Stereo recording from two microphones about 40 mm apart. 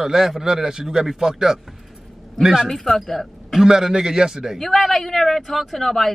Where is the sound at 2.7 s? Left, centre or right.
Centre.